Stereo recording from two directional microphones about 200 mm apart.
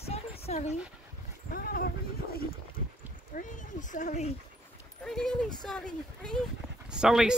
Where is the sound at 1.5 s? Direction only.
50° left (ahead or behind).